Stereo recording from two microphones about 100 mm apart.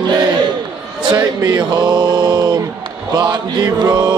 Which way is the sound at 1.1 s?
40° right (ahead or behind).